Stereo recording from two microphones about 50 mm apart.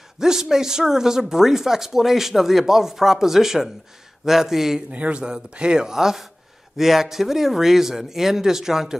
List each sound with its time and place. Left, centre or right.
0.2 s speech: centre
4.9 s speech: right; by 8.9 s centre